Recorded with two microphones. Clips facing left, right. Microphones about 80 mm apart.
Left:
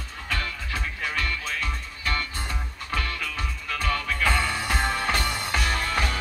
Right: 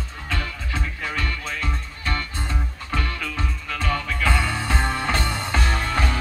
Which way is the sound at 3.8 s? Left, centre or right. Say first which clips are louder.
Right 1 dB; centre.